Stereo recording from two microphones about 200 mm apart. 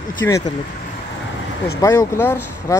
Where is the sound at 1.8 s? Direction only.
15° left (ahead or behind).